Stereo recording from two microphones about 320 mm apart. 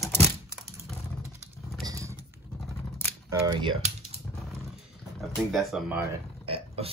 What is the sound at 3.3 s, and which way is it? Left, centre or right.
Typing, centre.